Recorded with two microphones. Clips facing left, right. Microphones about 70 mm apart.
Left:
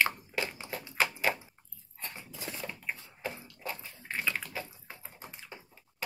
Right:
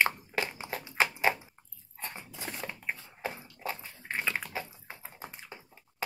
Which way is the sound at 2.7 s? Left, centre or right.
Right.